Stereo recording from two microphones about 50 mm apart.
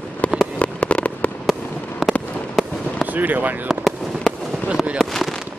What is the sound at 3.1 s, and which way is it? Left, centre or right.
Speech, right.